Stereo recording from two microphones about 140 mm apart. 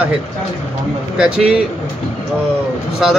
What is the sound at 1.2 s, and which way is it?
Speech, 5° right (ahead or behind).